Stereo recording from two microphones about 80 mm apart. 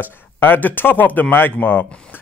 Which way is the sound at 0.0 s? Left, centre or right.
Left.